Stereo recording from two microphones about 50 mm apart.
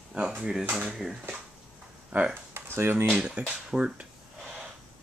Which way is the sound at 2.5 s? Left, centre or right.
Right.